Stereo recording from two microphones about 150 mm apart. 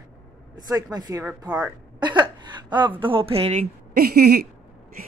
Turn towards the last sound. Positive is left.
turn(degrees=-90)